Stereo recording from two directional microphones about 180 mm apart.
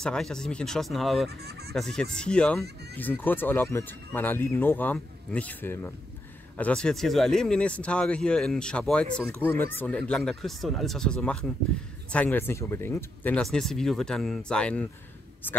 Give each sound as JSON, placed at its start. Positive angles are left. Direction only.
{"t": 0.0, "sound": "speech", "side_deg": 5}
{"t": 1.4, "sound": "speech", "side_deg": -65}
{"t": 1.7, "sound": "speech", "side_deg": 0}
{"t": 2.6, "sound": "speech", "side_deg": -65}
{"t": 3.0, "sound": "speech", "side_deg": 10}